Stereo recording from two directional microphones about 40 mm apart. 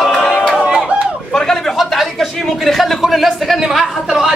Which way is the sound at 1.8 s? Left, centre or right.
Centre.